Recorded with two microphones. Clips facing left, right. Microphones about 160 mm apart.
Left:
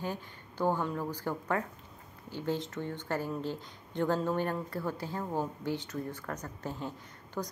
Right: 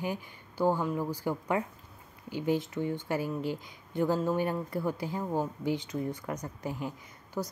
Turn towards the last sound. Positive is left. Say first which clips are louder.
# right 2 dB
turn(degrees=-10)  # may be behind; listen again after turning